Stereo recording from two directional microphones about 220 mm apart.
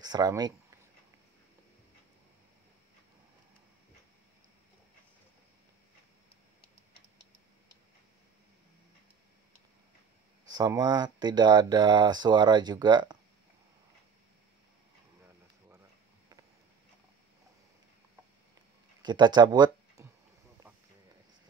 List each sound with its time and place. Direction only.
0.0 s speech: 20° right (ahead or behind)
10.5 s speech: 15° right (ahead or behind)
19.0 s speech: 20° right (ahead or behind)